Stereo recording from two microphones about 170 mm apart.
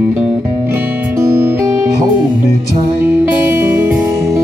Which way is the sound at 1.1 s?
15° right (ahead or behind).